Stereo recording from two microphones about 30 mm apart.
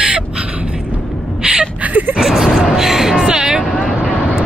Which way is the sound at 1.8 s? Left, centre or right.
Right.